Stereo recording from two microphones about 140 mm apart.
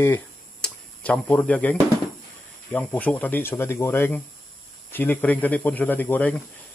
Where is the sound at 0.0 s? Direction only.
10° left (ahead or behind).